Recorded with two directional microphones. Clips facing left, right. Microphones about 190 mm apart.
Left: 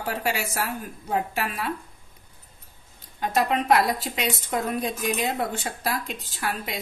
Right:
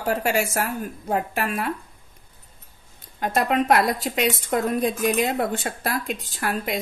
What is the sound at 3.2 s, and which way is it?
A woman's voice, 55° right (ahead or behind).